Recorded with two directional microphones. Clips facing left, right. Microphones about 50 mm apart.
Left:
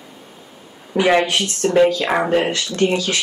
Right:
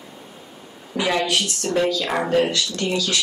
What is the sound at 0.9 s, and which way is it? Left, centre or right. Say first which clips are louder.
Speech: left 5 dB; left.